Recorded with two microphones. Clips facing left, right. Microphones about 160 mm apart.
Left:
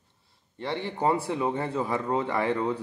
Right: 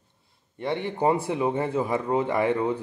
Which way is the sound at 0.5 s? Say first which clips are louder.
Right 3 dB; 20° right (ahead or behind).